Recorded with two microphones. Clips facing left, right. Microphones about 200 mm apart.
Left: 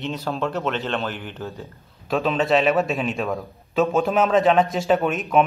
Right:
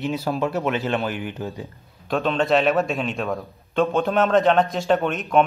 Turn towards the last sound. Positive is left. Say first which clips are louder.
# even
turn(degrees=0)  # may be behind; listen again after turning